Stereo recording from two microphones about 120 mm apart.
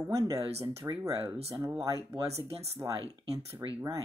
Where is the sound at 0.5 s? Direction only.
45° right (ahead or behind).